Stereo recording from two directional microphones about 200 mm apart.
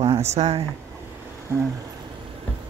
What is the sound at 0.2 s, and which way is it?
Speech, 35° right (ahead or behind).